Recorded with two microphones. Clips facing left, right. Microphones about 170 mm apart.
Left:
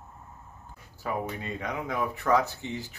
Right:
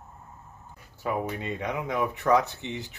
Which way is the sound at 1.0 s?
20° right (ahead or behind).